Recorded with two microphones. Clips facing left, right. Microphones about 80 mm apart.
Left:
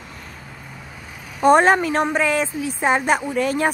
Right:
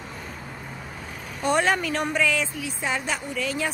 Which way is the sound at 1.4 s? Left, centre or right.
Left.